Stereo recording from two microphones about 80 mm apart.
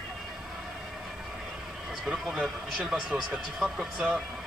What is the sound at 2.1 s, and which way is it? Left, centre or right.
Speech, centre.